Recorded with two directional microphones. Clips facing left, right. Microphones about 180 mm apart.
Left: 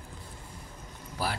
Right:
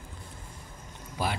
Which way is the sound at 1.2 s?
20° right (ahead or behind).